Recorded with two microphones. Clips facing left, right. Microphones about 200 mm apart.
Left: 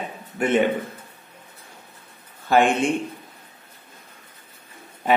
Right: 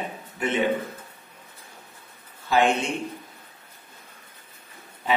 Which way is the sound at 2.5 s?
55° left (ahead or behind).